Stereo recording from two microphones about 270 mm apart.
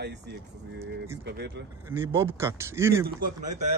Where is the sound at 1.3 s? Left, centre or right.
Right.